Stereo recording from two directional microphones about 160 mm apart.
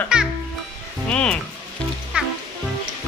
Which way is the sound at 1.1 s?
5° left (ahead or behind).